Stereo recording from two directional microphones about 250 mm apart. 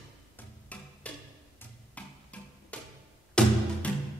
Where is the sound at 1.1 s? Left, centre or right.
Centre.